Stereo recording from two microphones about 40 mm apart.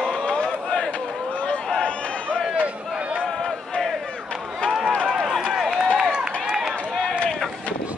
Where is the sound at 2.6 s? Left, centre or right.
Right.